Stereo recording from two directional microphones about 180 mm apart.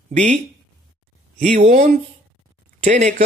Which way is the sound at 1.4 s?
40° right (ahead or behind).